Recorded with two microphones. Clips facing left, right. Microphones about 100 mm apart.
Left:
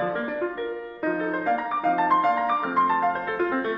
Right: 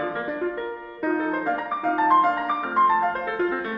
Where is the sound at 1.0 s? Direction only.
Centre (ahead or behind).